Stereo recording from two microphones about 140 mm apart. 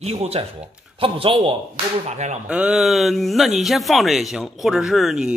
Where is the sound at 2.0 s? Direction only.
55° right (ahead or behind).